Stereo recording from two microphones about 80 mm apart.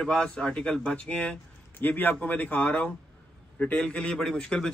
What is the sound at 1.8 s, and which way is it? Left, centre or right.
A man's voice, left.